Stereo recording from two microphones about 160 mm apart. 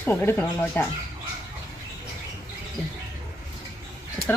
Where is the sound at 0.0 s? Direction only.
10° left (ahead or behind).